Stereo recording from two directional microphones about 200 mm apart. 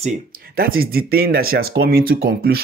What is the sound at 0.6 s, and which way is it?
Speech, 50° right (ahead or behind).